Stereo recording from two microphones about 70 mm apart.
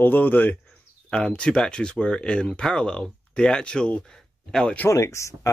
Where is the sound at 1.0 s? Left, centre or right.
Centre.